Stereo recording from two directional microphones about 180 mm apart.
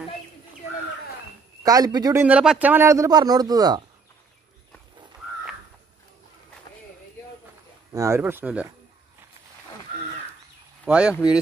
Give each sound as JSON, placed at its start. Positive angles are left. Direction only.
{"t": 1.6, "sound": "speech", "side_deg": -20}
{"t": 2.2, "sound": "a man's voice", "side_deg": -5}
{"t": 7.9, "sound": "a man's voice", "side_deg": -15}
{"t": 10.9, "sound": "speech", "side_deg": -5}